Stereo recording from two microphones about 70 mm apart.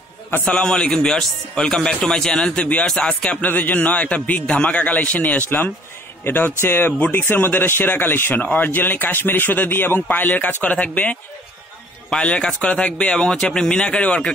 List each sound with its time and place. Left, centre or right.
0.5 s a man's voice: centre